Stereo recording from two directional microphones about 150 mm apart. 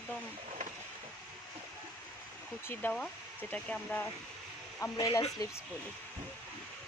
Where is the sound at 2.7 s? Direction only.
10° left (ahead or behind).